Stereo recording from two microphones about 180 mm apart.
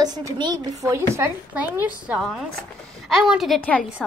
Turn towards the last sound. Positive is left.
turn(degrees=5)  # may be behind; listen again after turning